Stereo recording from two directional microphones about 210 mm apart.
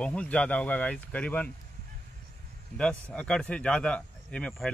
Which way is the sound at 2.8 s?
5° left (ahead or behind).